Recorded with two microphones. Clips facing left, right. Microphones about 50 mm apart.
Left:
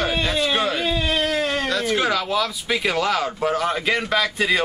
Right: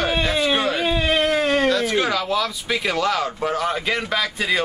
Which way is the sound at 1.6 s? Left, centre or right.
Centre.